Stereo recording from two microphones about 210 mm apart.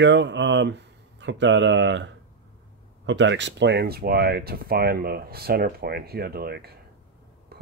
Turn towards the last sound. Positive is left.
turn(degrees=-45)  # may be behind; listen again after turning